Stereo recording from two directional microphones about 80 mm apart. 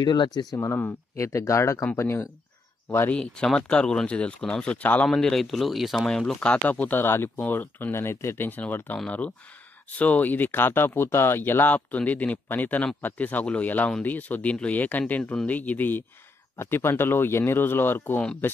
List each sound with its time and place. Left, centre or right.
0.0 s speech: left
1.1 s speech: left
3.1 s speech: centre
5.1 s speech: centre; by 18.2 s left